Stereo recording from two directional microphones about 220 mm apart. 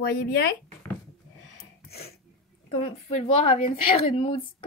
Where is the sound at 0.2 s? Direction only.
45° left (ahead or behind).